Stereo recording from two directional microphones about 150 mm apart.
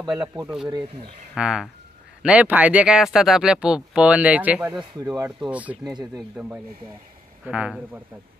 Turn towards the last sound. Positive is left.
turn(degrees=-5)  # may be behind; listen again after turning